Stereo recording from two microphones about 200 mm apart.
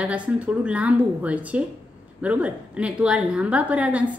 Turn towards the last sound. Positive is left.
turn(degrees=-5)  # may be behind; listen again after turning